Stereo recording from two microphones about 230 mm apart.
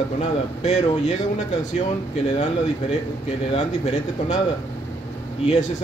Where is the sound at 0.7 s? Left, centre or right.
Left.